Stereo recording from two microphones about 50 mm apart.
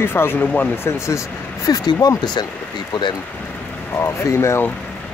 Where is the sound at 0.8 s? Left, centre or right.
Left.